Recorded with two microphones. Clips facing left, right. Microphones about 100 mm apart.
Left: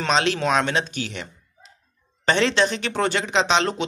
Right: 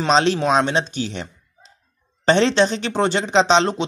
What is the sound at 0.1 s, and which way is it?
Speech, 30° right (ahead or behind).